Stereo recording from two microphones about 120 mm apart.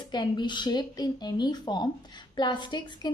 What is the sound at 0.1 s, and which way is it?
A woman's voice, 40° left (ahead or behind).